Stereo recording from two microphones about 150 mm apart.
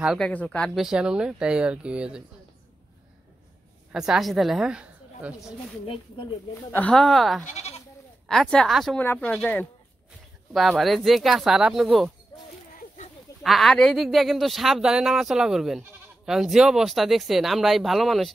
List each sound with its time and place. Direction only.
0.2 s speech: 10° left (ahead or behind)
3.9 s a woman's voice: 5° right (ahead or behind)
6.7 s speech: 10° left (ahead or behind)
7.4 s goat: 45° left (ahead or behind)
8.3 s speech: 5° left (ahead or behind)
9.0 s speech: 15° left (ahead or behind)
12.7 s a sound: 55° left (ahead or behind)
13.4 s speech: centre (ahead or behind)